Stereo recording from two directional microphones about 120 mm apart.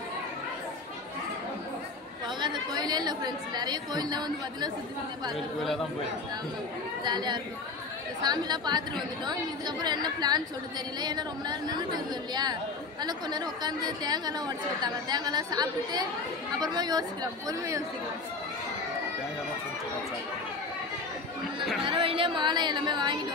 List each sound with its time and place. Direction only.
2.2 s a woman's voice: 40° right (ahead or behind)
5.3 s speech: centre (ahead or behind)
7.1 s a woman's voice: 40° right (ahead or behind)
21.8 s speech: 45° right (ahead or behind)